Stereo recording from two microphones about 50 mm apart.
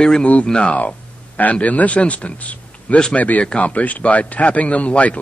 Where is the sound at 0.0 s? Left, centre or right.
Centre.